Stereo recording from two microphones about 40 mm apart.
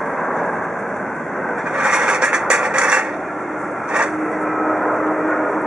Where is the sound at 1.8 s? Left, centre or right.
Right.